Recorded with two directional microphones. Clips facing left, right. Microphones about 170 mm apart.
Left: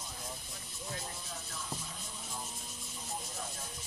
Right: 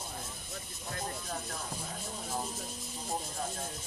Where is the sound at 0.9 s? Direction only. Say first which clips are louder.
Right 8 dB; 55° right (ahead or behind).